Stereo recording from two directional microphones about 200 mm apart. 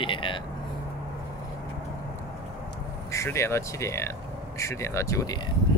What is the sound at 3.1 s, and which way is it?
Speech, 15° left (ahead or behind).